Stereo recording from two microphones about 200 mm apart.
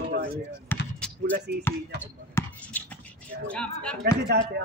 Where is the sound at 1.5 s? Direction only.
55° right (ahead or behind).